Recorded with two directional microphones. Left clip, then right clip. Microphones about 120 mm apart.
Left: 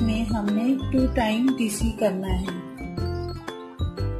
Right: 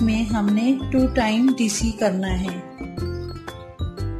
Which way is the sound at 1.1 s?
30° right (ahead or behind).